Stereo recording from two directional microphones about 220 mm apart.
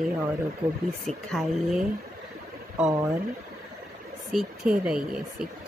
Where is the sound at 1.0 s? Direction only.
Centre (ahead or behind).